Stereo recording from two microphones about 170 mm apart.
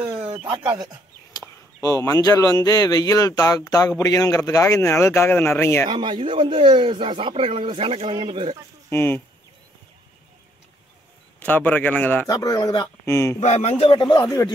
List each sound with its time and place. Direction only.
0.3 s speech: 30° right (ahead or behind)
1.3 s a man's voice: 20° left (ahead or behind)
5.9 s speech: 30° right (ahead or behind)
8.9 s a man's voice: 15° left (ahead or behind)
11.3 s a man's voice: 10° left (ahead or behind)
12.4 s speech: 20° left (ahead or behind)
13.4 s speech: 40° left (ahead or behind); by 14.5 s 25° left (ahead or behind)